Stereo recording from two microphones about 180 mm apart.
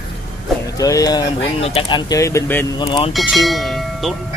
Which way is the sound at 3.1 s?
Centre (ahead or behind).